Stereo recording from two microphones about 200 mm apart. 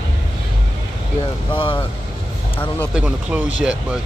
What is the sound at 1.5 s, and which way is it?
Speech, 25° left (ahead or behind).